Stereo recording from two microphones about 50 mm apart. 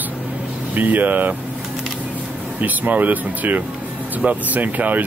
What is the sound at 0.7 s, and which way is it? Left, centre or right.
Speech, right.